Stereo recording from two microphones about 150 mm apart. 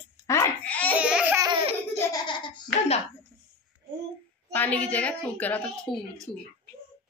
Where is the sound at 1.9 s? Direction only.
25° left (ahead or behind).